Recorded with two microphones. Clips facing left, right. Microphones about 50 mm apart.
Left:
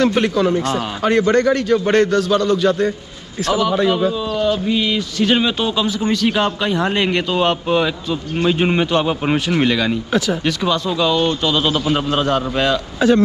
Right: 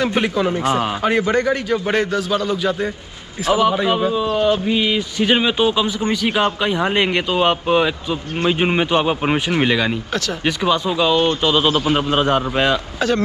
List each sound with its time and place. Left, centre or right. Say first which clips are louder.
0.0 s a man's voice: left 3 dB; centre